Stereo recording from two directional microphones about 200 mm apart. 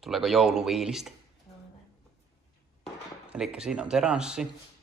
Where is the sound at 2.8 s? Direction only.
Centre (ahead or behind).